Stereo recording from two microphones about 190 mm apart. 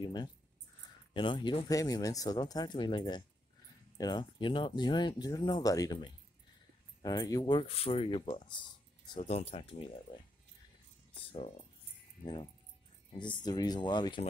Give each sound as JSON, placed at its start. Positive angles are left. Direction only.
{"t": 0.0, "sound": "speech", "side_deg": 20}
{"t": 11.3, "sound": "speech", "side_deg": 30}
{"t": 13.2, "sound": "speech", "side_deg": 25}